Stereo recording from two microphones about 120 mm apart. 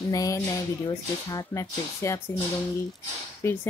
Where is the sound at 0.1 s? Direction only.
30° left (ahead or behind).